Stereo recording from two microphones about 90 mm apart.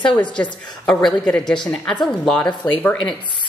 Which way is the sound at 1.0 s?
10° left (ahead or behind).